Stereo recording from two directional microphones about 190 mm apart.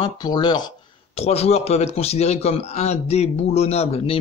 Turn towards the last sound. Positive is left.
turn(degrees=35)  # may be behind; listen again after turning